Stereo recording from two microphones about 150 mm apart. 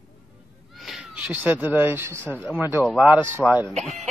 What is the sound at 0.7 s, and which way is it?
Speech, centre (ahead or behind).